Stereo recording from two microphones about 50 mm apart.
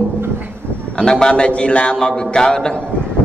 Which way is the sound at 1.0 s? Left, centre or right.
Centre.